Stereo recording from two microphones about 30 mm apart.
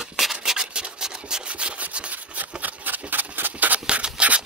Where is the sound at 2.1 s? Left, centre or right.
Right.